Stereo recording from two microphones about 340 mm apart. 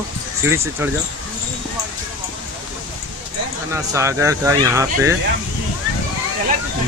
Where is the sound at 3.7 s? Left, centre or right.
Centre.